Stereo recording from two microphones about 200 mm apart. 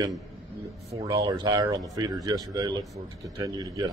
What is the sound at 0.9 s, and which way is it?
Speech, 20° right (ahead or behind).